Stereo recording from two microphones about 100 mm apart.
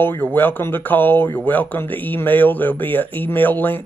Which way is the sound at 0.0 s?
20° left (ahead or behind).